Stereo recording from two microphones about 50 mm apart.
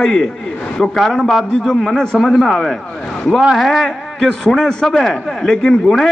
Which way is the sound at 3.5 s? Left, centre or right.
Centre.